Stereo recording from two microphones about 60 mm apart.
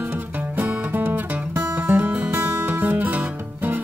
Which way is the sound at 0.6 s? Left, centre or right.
Right.